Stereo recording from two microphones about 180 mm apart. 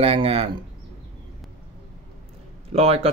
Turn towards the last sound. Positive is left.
turn(degrees=-35)  # may be behind; listen again after turning